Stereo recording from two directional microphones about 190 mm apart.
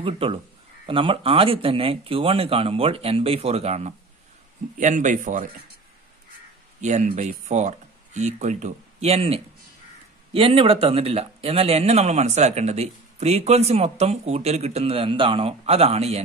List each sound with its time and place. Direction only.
0.0 s speech: 30° right (ahead or behind); by 5.5 s 45° right (ahead or behind)
6.8 s speech: 40° right (ahead or behind)